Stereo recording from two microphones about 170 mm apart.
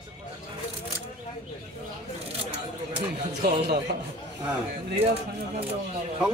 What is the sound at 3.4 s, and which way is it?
Speech, 75° right (ahead or behind).